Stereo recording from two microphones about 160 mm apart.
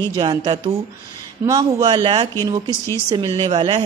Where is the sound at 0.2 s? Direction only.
25° right (ahead or behind).